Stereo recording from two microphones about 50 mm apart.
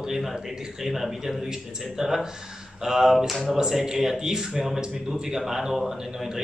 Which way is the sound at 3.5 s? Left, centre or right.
Centre.